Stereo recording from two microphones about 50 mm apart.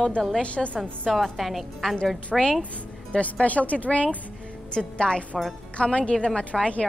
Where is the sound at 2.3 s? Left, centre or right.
Centre.